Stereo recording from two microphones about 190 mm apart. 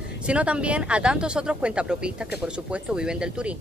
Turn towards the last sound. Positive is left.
turn(degrees=-5)  # may be behind; listen again after turning